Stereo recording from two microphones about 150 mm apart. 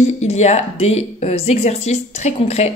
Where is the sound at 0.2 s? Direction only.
45° left (ahead or behind).